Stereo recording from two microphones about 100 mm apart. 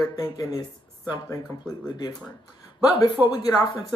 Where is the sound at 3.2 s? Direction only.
15° right (ahead or behind).